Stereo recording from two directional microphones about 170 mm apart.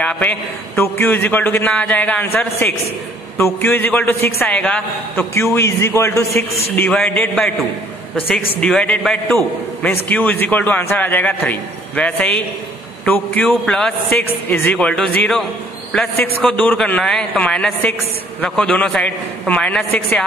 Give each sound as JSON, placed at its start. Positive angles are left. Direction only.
{"t": 0.0, "sound": "a man's voice", "side_deg": 10}
{"t": 8.5, "sound": "a man's voice", "side_deg": 5}
{"t": 16.2, "sound": "a man's voice", "side_deg": 10}